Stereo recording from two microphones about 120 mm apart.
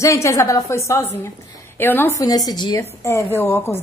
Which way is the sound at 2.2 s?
35° left (ahead or behind).